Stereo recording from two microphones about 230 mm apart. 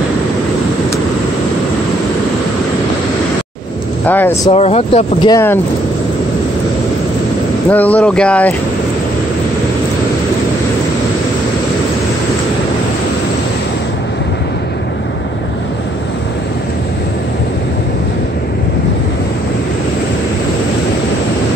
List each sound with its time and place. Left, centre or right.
4.0 s speech: centre
4.5 s speech: left
7.7 s speech: centre